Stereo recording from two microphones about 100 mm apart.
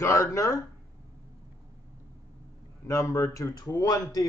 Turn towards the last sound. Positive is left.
turn(degrees=40)  # may be behind; listen again after turning